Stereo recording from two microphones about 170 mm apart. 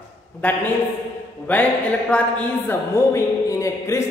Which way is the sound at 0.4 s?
10° left (ahead or behind).